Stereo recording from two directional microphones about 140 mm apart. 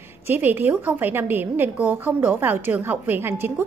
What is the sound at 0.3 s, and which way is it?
A woman's voice, 15° right (ahead or behind).